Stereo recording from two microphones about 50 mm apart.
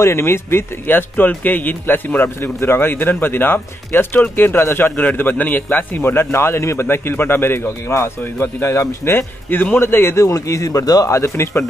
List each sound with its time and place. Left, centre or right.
0.0 s speech: left
0.8 s a man's voice: left
9.1 s a man's voice: left
10.2 s speech: left